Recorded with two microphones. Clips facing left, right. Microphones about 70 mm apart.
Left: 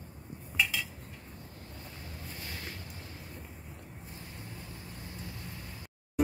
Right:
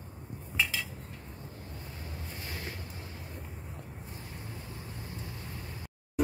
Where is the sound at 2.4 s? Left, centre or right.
Right.